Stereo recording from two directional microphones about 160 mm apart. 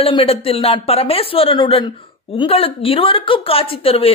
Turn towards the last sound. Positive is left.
turn(degrees=35)  # may be behind; listen again after turning